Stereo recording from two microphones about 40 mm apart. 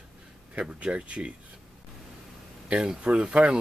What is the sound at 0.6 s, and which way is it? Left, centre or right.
Speech, right.